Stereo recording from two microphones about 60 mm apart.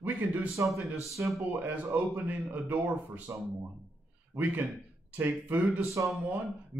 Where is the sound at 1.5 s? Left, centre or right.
Right.